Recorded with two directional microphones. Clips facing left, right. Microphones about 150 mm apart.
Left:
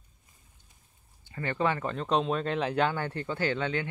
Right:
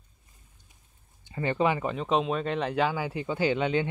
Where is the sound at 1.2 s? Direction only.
20° right (ahead or behind).